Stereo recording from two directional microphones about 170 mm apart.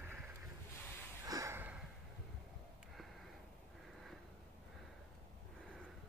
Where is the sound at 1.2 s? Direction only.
20° right (ahead or behind).